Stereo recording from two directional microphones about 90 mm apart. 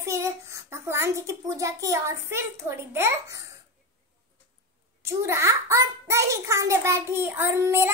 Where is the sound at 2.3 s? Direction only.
30° right (ahead or behind).